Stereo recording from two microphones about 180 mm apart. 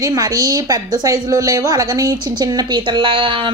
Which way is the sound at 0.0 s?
20° right (ahead or behind).